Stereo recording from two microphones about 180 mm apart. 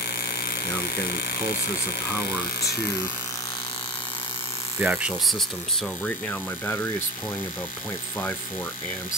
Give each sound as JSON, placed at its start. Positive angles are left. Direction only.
{"t": 0.9, "sound": "speech", "side_deg": 60}
{"t": 4.7, "sound": "speech", "side_deg": -5}
{"t": 6.0, "sound": "speech", "side_deg": 10}